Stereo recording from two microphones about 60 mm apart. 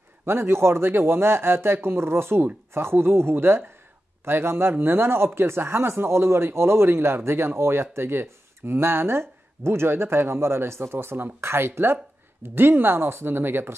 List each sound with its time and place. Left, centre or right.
0.2 s speech: right